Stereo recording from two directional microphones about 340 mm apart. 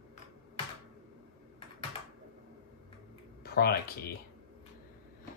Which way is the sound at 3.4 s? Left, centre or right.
Left.